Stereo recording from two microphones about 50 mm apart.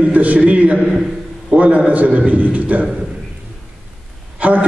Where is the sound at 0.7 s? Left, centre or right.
Centre.